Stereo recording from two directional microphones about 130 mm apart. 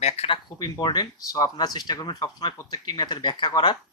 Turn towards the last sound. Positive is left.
turn(degrees=35)  # may be behind; listen again after turning